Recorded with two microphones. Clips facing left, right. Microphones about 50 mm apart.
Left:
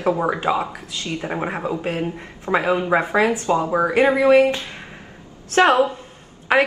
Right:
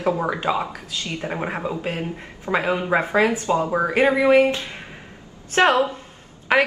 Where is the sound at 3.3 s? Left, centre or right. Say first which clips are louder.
Left 1 dB; left.